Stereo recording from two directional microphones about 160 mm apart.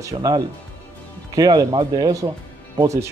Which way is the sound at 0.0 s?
25° right (ahead or behind).